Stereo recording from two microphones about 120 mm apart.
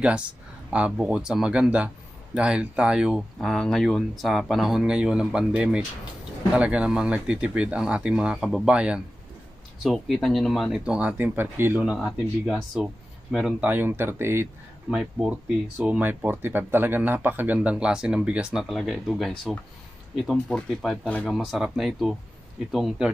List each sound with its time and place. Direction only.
0.7 s speech: 10° right (ahead or behind)
14.9 s speech: 10° right (ahead or behind)